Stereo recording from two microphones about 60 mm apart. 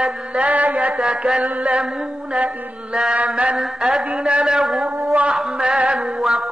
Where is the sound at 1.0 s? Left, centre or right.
Centre.